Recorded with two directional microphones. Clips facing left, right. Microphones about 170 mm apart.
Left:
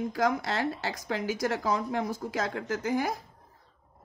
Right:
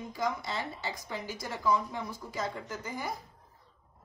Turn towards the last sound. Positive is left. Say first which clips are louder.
# left 9 dB
turn(degrees=85)